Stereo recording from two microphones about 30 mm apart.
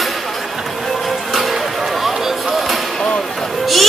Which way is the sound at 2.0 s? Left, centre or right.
Centre.